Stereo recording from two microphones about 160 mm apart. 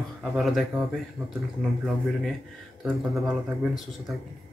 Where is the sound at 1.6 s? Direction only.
Centre (ahead or behind).